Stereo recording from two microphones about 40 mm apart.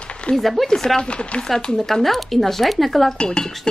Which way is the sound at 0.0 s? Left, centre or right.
Left.